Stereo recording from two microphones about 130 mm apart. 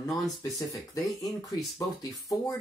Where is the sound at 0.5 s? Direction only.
25° left (ahead or behind).